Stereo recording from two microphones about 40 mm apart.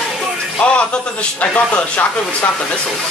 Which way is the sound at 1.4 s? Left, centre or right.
Left.